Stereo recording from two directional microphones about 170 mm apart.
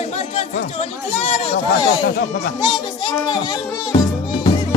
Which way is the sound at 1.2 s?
35° left (ahead or behind).